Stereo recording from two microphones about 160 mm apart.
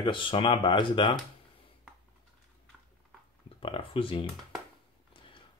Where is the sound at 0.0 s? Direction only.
30° left (ahead or behind).